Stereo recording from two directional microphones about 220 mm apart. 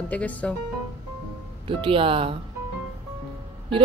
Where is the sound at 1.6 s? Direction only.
25° right (ahead or behind).